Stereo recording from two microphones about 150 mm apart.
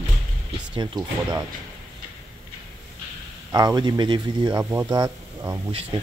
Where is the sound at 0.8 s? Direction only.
25° right (ahead or behind).